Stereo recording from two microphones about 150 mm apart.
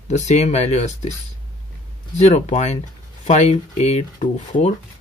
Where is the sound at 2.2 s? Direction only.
50° left (ahead or behind).